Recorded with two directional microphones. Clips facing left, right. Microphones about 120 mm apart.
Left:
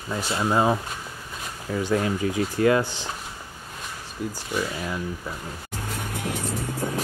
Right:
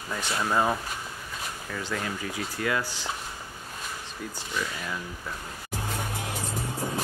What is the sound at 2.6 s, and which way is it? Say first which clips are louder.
Speech: left 9 dB; 30° left (ahead or behind).